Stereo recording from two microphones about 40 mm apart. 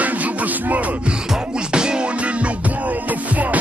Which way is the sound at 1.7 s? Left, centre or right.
Right.